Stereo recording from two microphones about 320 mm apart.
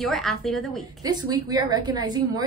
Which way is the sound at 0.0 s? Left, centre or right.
Centre.